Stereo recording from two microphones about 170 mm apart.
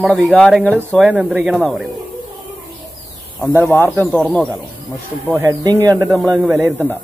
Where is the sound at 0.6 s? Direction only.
10° right (ahead or behind).